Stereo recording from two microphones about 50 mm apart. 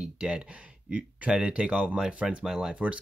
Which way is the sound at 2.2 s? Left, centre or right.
Centre.